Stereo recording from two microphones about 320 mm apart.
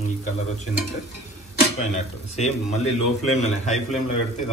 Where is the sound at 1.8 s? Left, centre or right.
Left.